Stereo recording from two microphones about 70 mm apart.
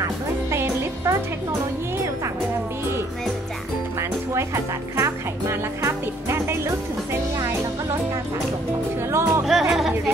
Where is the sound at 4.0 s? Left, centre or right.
Right.